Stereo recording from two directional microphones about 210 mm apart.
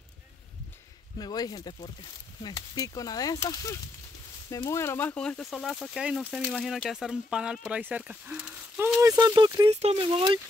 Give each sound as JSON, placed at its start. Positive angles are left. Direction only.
{"t": 1.1, "sound": "speech", "side_deg": 20}
{"t": 9.0, "sound": "speech", "side_deg": -15}